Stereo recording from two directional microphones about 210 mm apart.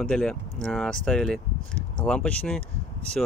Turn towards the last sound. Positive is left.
turn(degrees=5)  # may be behind; listen again after turning